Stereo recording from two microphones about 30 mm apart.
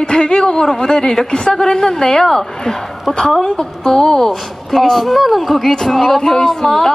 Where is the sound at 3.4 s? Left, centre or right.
Centre.